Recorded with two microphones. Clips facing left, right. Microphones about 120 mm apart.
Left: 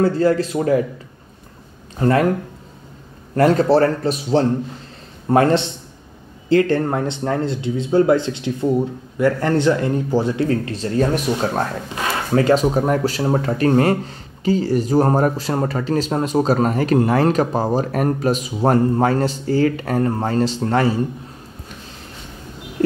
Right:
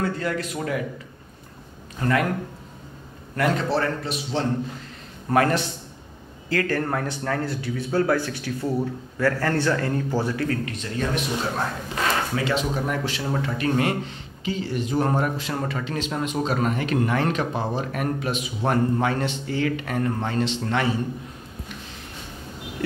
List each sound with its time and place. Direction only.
0.0 s speech: 35° left (ahead or behind)
2.0 s speech: 35° left (ahead or behind)
3.3 s speech: 40° left (ahead or behind)
5.3 s speech: 30° left (ahead or behind)